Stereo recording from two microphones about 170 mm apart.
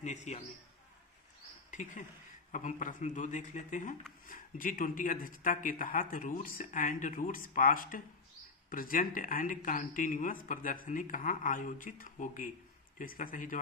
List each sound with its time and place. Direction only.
0.0 s speech: 45° left (ahead or behind)
1.7 s speech: 45° left (ahead or behind)